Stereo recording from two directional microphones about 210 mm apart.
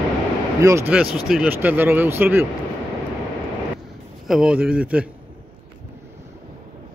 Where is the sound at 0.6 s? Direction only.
15° right (ahead or behind).